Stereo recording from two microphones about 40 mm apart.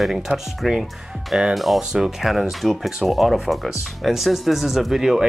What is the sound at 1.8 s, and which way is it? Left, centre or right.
Speech, centre.